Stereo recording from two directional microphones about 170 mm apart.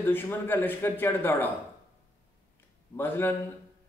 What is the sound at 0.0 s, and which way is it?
A man's voice, 10° left (ahead or behind).